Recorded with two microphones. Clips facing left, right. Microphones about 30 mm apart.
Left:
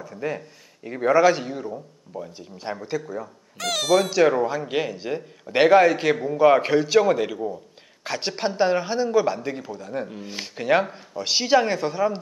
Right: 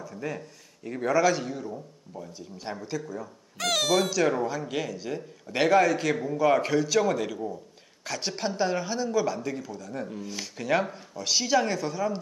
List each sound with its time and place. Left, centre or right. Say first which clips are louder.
0.0 s a man's voice: left 5 dB; left
3.5 s speech: left 4 dB; centre
4.1 s a man's voice: left 6 dB; left